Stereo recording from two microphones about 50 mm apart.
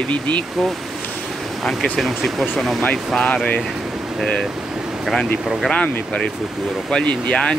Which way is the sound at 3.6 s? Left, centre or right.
Centre.